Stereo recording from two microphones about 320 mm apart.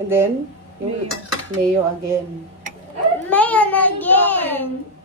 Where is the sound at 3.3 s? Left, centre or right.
Centre.